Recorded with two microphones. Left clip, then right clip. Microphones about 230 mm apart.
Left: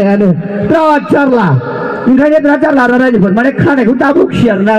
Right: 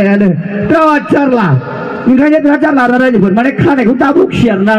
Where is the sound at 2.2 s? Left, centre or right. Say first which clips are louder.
Left 1 dB; left.